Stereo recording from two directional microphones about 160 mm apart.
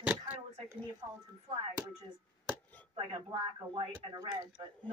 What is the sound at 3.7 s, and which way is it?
Speech, 25° right (ahead or behind).